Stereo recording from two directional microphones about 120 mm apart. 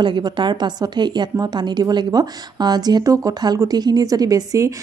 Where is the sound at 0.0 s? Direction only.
40° right (ahead or behind).